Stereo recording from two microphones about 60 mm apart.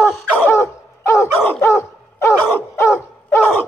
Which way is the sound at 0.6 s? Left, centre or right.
Left.